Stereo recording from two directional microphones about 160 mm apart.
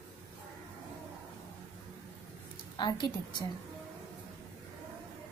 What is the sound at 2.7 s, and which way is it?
Speech, 25° left (ahead or behind).